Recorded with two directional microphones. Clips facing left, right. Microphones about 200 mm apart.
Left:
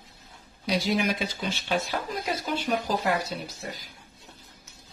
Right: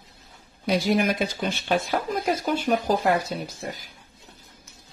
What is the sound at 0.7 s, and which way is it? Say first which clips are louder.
Speech: right 4 dB; 50° right (ahead or behind).